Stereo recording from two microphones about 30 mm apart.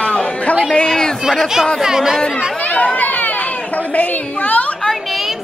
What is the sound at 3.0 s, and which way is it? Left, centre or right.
Chatter, left.